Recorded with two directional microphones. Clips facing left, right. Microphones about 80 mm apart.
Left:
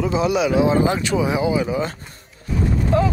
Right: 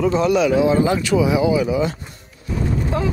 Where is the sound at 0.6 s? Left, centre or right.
Left.